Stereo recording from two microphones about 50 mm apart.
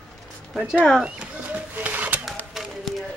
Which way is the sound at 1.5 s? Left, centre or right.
Right.